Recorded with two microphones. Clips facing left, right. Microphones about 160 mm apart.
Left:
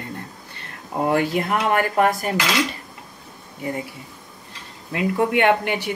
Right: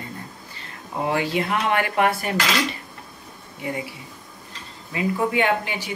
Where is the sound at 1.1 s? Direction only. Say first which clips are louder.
Left 2 dB; 45° left (ahead or behind).